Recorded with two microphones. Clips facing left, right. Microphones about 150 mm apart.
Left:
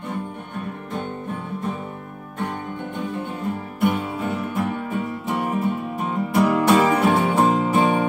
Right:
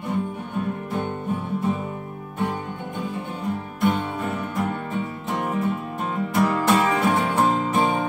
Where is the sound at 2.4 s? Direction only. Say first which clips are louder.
Right 1 dB; centre (ahead or behind).